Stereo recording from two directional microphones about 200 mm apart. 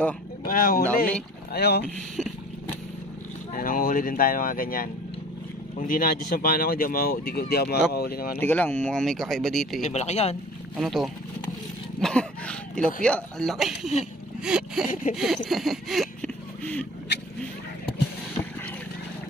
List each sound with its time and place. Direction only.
0.5 s speech: 45° left (ahead or behind)
2.1 s vehicle: centre (ahead or behind)
3.5 s speech: 45° left (ahead or behind)
8.4 s speech: 10° left (ahead or behind)
9.8 s speech: 35° left (ahead or behind)
10.8 s speech: centre (ahead or behind)
14.4 s a sound: 5° right (ahead or behind)